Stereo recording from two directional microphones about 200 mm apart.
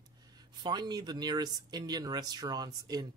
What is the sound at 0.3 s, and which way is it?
Speech, 20° right (ahead or behind).